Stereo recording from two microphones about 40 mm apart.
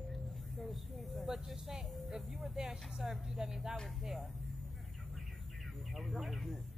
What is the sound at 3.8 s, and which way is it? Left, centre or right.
Speech, centre.